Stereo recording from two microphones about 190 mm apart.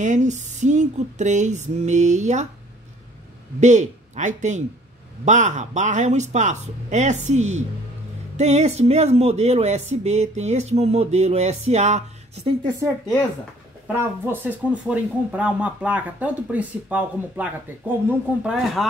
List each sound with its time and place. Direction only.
0.0 s speech: 40° right (ahead or behind)
3.6 s speech: 40° right (ahead or behind)
13.8 s speech: 10° right (ahead or behind)